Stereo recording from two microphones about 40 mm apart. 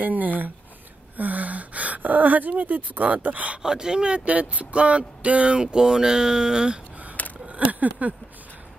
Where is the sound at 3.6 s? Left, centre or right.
Centre.